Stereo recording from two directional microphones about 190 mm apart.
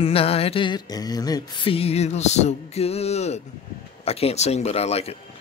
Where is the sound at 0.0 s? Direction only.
30° left (ahead or behind).